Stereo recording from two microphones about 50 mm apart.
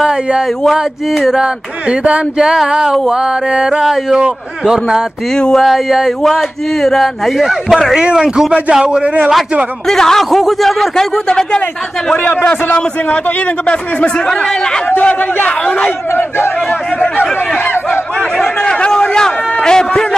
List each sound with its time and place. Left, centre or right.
1.1 s speech: centre
1.4 s speech: right
2.4 s a sound: centre
5.3 s a man's voice: centre
5.6 s speech: centre
8.0 s a sound: centre
8.7 s speech: centre
9.8 s a man's voice: centre
11.2 s a man's voice: centre
13.7 s speech: centre
18.7 s a man's voice: centre